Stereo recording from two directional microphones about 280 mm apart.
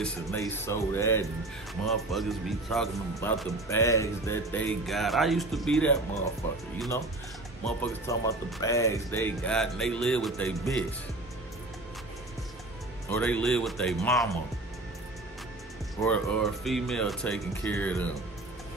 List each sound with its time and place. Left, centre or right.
0.0 s speech: centre
7.6 s speech: centre
13.1 s speech: centre
16.0 s speech: centre